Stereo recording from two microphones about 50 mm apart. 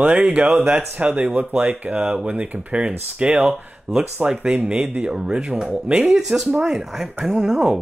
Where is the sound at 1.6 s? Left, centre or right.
Right.